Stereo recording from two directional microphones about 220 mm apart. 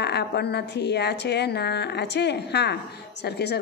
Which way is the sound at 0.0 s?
50° left (ahead or behind).